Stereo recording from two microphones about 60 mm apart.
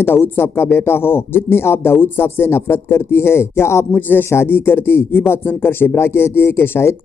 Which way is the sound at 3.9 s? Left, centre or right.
Left.